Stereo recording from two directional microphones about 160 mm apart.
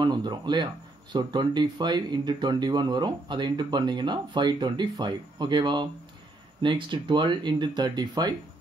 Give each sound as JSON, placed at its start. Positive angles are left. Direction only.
{"t": 0.0, "sound": "speech", "side_deg": -25}